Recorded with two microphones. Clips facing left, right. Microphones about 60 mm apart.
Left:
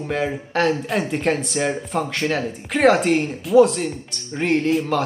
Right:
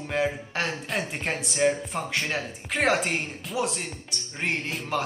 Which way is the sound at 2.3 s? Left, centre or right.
Centre.